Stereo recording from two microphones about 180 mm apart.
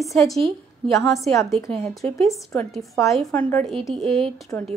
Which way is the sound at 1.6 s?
35° right (ahead or behind).